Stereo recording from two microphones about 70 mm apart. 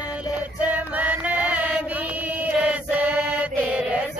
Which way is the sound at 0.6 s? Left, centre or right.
Right.